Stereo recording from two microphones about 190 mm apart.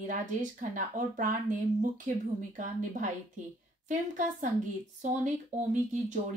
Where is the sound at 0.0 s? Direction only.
45° right (ahead or behind).